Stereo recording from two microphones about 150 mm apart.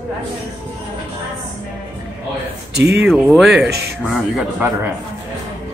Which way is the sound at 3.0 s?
5° right (ahead or behind).